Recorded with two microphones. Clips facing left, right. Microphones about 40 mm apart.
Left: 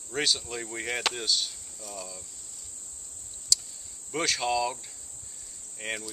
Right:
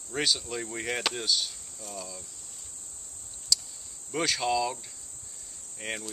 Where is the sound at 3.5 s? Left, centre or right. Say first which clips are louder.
Even; centre.